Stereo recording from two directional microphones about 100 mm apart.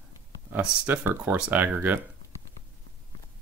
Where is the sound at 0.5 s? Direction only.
20° right (ahead or behind).